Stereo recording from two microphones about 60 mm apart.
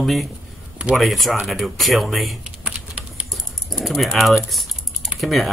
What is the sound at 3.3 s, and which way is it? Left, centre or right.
Typing, centre.